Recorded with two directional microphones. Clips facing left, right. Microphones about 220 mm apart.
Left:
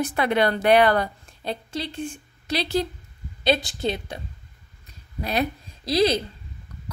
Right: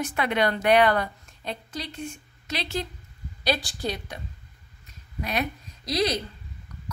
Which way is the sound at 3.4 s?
25° left (ahead or behind).